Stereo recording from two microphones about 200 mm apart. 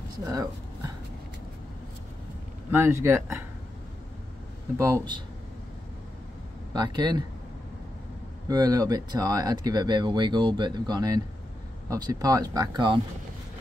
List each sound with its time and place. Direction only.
0.2 s speech: 15° right (ahead or behind)
2.7 s speech: 15° right (ahead or behind)
4.7 s speech: 15° right (ahead or behind)
6.7 s speech: 20° right (ahead or behind)
8.5 s speech: 20° right (ahead or behind)